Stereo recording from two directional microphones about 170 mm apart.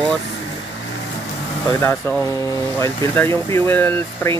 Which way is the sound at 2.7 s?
15° left (ahead or behind).